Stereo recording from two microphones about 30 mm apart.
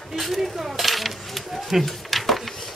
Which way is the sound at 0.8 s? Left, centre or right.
Centre.